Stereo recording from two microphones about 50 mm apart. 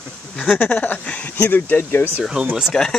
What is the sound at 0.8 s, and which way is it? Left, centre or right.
Speech, left.